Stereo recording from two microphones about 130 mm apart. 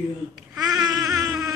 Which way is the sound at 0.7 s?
30° right (ahead or behind).